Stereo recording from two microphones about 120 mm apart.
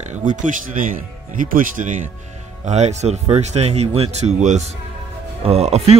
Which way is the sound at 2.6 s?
70° right (ahead or behind).